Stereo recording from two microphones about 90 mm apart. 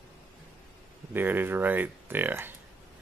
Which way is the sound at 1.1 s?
20° right (ahead or behind).